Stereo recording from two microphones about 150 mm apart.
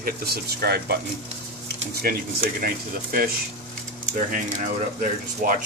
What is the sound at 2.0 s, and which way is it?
Speech, 75° right (ahead or behind).